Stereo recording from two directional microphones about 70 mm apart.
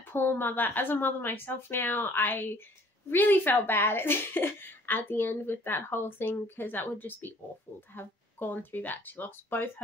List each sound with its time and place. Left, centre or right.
0.1 s a woman's voice: left